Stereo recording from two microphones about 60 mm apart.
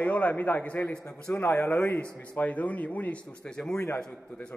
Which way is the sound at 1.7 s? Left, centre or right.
Left.